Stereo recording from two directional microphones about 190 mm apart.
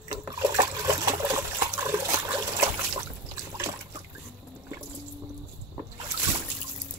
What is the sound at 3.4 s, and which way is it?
Trickle, 15° right (ahead or behind).